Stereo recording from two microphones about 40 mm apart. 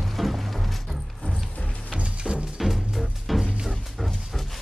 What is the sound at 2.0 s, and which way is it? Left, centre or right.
Music, right.